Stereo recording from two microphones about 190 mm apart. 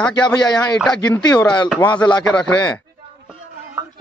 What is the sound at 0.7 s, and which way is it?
Speech, 5° left (ahead or behind).